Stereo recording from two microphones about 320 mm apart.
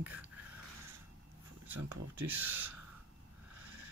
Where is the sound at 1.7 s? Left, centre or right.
Right.